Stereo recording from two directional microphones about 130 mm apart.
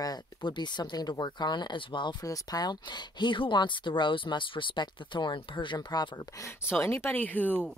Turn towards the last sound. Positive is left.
turn(degrees=15)  # may be behind; listen again after turning